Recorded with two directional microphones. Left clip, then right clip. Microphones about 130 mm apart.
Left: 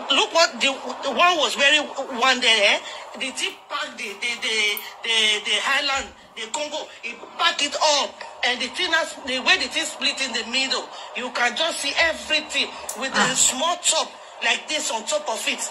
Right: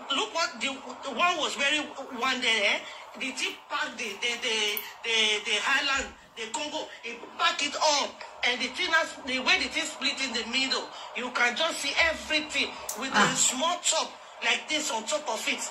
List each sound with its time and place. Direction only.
0.1 s a man's voice: 45° left (ahead or behind); by 15.7 s 30° left (ahead or behind)